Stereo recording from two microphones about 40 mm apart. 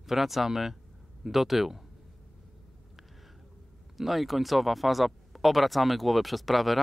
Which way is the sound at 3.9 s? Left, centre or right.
Centre.